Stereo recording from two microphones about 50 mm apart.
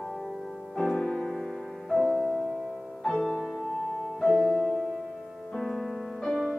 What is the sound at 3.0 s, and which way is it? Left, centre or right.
Music, centre.